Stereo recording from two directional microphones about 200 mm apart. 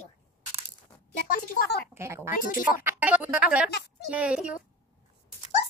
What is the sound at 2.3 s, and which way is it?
Speech, 45° left (ahead or behind).